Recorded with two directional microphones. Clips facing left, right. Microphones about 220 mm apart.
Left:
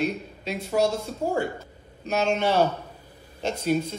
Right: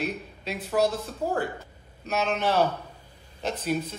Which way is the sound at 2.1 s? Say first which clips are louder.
Left 3 dB; centre (ahead or behind).